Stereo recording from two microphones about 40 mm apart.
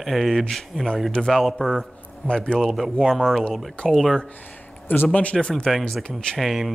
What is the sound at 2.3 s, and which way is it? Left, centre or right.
Speech, left.